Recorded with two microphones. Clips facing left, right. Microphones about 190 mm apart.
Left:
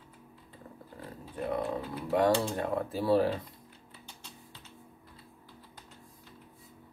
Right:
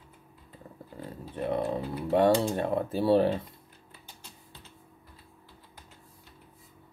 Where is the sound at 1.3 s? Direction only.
30° right (ahead or behind).